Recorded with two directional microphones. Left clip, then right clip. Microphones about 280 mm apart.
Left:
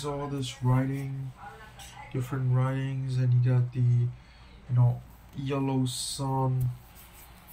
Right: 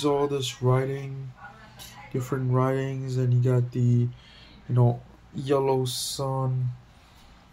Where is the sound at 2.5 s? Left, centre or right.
Right.